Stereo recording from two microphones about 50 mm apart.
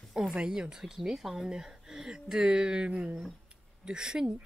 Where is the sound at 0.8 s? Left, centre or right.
Centre.